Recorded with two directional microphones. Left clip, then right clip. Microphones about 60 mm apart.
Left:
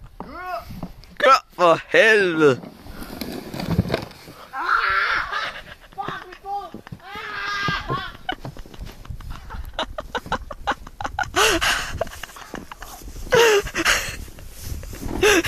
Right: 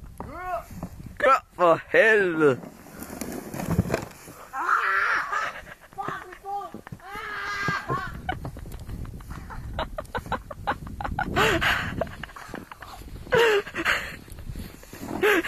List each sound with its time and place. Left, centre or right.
1.1 s hiccup: centre
1.7 s speech: centre
3.3 s vehicle: centre
4.0 s a sound: centre
5.3 s crow: centre
5.9 s a sound: right
9.8 s chicken: centre
11.4 s gasp: centre
13.3 s a sound: left